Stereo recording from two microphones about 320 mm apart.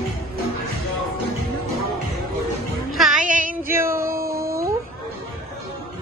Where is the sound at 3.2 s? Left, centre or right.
Right.